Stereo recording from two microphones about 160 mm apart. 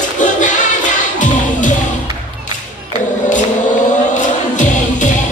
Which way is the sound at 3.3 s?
50° left (ahead or behind).